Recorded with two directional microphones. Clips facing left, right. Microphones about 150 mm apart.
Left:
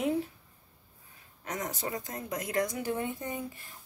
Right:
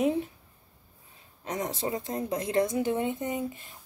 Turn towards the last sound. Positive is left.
turn(degrees=-20)  # may be behind; listen again after turning